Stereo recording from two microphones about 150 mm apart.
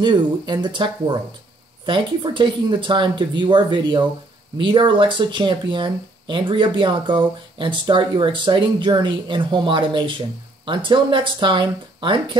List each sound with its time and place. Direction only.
0.0 s speech: 30° right (ahead or behind)